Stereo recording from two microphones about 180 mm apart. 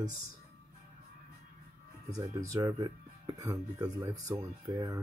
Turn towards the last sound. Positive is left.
turn(degrees=-15)  # may be behind; listen again after turning